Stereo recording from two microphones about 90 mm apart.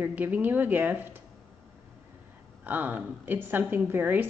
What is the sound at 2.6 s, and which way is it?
Speech, 20° right (ahead or behind).